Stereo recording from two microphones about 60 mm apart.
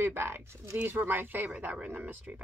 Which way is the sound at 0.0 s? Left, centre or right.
Right.